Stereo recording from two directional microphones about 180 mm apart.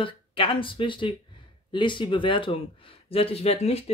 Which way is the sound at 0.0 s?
30° left (ahead or behind).